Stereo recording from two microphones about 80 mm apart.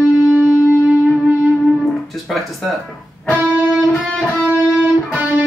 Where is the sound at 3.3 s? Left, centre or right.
Right.